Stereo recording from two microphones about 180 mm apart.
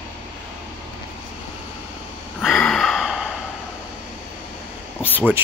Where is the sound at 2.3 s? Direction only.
5° left (ahead or behind).